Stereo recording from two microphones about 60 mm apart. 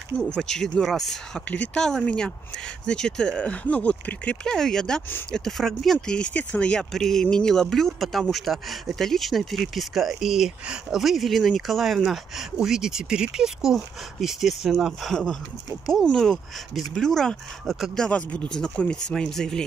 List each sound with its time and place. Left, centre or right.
0.2 s speech: centre
4.5 s speech: centre
16.1 s speech: centre
17.9 s speech: centre